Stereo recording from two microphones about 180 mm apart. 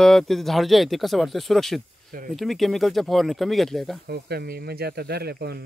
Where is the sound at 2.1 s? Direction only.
50° right (ahead or behind).